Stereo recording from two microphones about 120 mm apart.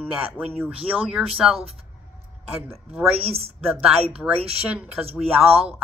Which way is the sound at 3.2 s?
55° right (ahead or behind).